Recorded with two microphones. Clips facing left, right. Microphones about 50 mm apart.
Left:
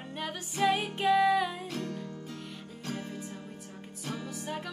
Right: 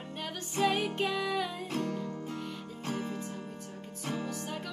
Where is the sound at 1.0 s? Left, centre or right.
Centre.